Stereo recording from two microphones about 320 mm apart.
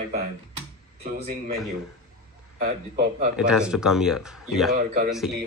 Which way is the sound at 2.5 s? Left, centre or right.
Right.